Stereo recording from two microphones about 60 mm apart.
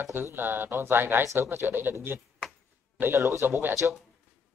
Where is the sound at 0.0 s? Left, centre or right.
Right.